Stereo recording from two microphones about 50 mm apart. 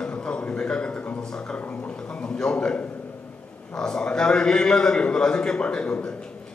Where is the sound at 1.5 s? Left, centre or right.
Left.